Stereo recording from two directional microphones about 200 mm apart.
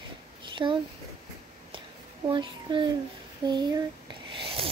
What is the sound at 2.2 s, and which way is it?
Speech, 25° right (ahead or behind).